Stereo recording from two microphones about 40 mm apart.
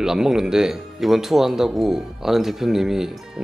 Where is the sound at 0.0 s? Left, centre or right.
Centre.